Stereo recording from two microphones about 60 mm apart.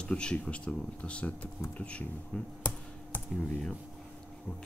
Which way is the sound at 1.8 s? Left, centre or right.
Left.